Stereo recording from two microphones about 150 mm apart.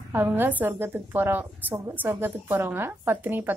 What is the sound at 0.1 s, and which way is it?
A woman's voice, 15° right (ahead or behind).